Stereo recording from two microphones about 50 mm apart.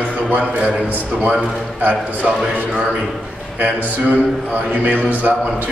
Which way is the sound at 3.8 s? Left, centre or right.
Right.